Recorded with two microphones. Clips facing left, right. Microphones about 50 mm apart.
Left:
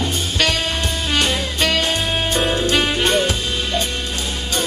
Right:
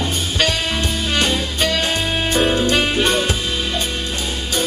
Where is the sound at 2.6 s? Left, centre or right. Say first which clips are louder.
Right 1 dB; right.